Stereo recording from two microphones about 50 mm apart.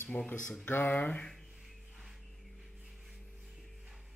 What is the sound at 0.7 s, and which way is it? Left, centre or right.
Speech, left.